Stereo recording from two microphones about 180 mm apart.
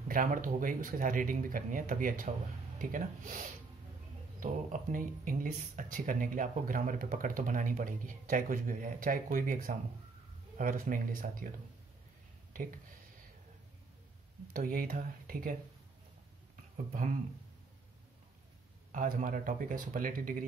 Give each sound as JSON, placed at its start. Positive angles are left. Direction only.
{"t": 0.1, "sound": "speech", "side_deg": -50}
{"t": 14.5, "sound": "speech", "side_deg": -50}
{"t": 16.9, "sound": "speech", "side_deg": -45}
{"t": 18.9, "sound": "speech", "side_deg": -45}